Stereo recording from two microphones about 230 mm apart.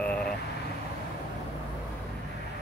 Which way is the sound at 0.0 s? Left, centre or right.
Centre.